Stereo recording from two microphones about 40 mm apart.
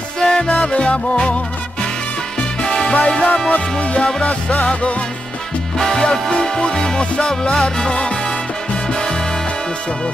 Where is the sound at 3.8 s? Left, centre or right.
Left.